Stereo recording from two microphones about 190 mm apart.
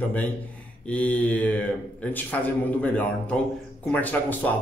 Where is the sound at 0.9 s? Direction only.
5° left (ahead or behind).